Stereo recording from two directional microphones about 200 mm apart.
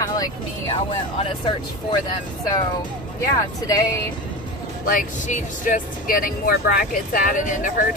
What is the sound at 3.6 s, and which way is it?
Speech, 15° left (ahead or behind).